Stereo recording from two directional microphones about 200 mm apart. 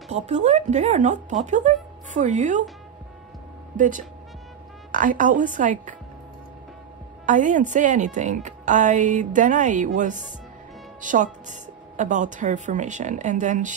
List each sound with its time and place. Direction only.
0.1 s a woman's voice: 35° right (ahead or behind)
3.7 s a woman's voice: 40° right (ahead or behind)
7.2 s a woman's voice: 40° right (ahead or behind)